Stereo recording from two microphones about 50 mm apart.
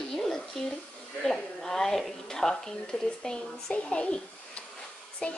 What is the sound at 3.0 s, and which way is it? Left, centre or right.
A child's voice, centre.